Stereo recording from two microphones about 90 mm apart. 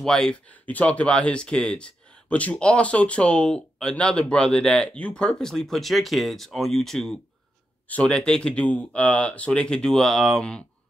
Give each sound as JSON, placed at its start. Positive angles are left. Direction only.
{"t": 0.0, "sound": "speech", "side_deg": 5}